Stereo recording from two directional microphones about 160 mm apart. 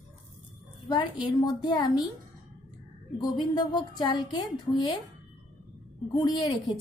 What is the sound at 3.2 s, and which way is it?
A woman's voice, 25° left (ahead or behind).